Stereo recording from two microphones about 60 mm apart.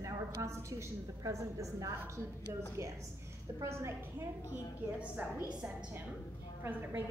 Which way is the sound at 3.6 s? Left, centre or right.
Right.